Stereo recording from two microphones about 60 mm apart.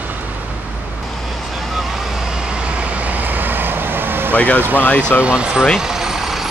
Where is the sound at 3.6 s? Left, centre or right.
Right.